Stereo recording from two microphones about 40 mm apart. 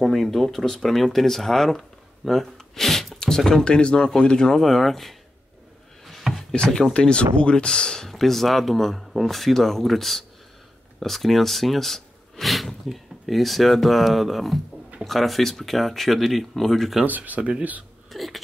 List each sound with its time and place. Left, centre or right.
0.0 s speech: centre
4.5 s speech: centre
6.5 s speech: left
8.1 s speech: centre
17.0 s speech: right
18.1 s a sound: centre